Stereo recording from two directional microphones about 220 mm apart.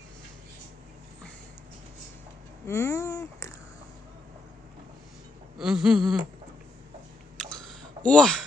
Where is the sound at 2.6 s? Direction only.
10° left (ahead or behind).